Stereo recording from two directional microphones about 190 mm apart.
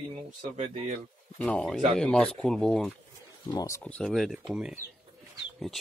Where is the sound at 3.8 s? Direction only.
5° left (ahead or behind).